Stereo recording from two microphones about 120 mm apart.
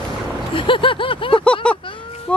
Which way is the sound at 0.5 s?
45° left (ahead or behind).